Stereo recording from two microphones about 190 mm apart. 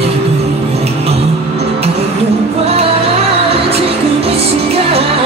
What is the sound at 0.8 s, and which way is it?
Music, 35° right (ahead or behind).